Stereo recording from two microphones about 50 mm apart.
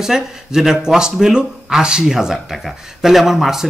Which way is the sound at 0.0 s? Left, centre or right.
Centre.